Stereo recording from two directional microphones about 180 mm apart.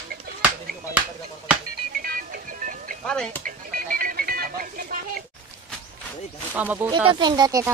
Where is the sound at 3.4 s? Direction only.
50° right (ahead or behind).